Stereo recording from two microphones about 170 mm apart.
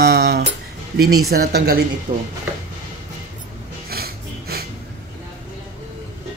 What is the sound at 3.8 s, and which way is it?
Snort, 65° right (ahead or behind).